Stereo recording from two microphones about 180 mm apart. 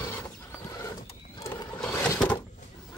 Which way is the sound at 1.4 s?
15° left (ahead or behind).